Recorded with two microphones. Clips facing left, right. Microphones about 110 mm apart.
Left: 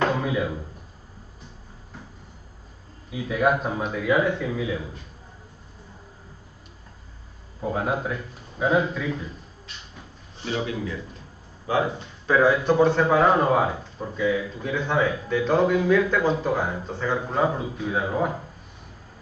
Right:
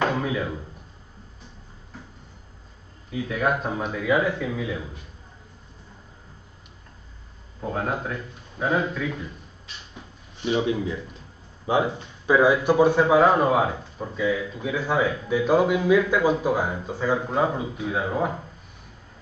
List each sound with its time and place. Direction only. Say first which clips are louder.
0.0 s a sound: left 1 dB; 5° left (ahead or behind)
3.1 s a man's voice: left 2 dB; 5° left (ahead or behind)
7.6 s a man's voice: left 2 dB; 5° left (ahead or behind)
10.4 s speech: right 4 dB; 20° right (ahead or behind); by 18.3 s centre (ahead or behind)